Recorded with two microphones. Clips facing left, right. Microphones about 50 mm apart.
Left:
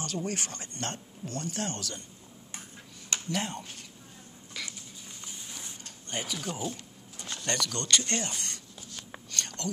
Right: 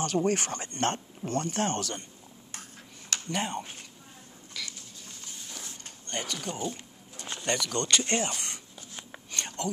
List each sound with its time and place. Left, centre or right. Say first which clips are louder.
0.0 s speech: right 7 dB; right
3.3 s speech: right 2 dB; centre
4.6 s patter: even; centre
5.2 s a sound: right 1 dB; centre
6.0 s speech: even; centre
7.2 s pigeon: right 2 dB; right
7.4 s speech: right 3 dB; centre
9.3 s whispering: right 3 dB; centre